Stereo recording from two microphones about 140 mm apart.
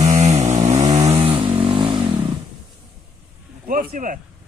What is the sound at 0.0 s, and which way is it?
Vehicle, 55° right (ahead or behind).